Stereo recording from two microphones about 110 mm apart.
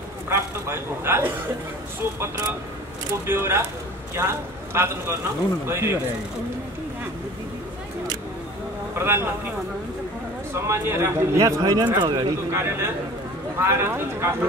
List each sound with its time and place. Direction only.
0.3 s a man's voice: 20° right (ahead or behind)
3.3 s a man's voice: 20° right (ahead or behind)
8.9 s speech: 20° right (ahead or behind)
10.5 s speech: 25° right (ahead or behind); by 12.3 s 40° right (ahead or behind)
12.4 s speech: 25° right (ahead or behind)